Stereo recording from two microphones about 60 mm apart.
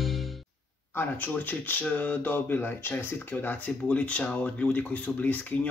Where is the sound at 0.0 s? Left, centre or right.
Centre.